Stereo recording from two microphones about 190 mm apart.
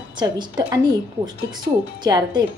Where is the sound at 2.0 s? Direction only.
20° right (ahead or behind).